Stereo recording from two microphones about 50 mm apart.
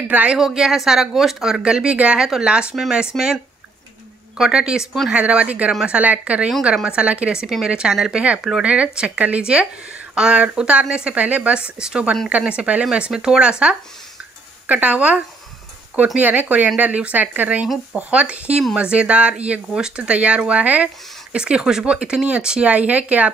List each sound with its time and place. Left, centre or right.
0.1 s speech: right
0.4 s speech: centre
1.6 s speech: centre
2.1 s speech: centre
2.4 s speech: centre
2.7 s speech: centre
4.4 s speech: centre
13.1 s speech: centre